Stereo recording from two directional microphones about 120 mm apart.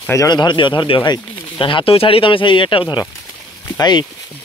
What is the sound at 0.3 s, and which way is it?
Speech, 40° left (ahead or behind).